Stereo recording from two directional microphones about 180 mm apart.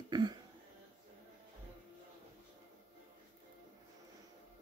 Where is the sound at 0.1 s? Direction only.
25° right (ahead or behind).